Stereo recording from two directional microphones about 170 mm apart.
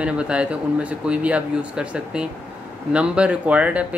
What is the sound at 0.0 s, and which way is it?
Speech, 5° right (ahead or behind).